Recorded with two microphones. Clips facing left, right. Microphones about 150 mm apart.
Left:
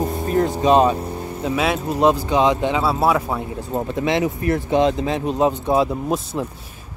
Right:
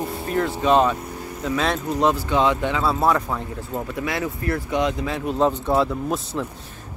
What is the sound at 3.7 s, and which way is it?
Speech, 25° left (ahead or behind).